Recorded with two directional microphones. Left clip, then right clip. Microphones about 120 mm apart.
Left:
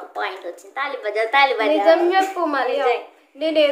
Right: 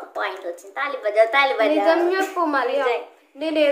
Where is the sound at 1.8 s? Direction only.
15° left (ahead or behind).